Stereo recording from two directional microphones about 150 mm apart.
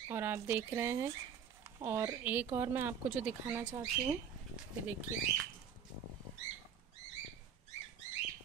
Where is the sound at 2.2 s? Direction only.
10° right (ahead or behind).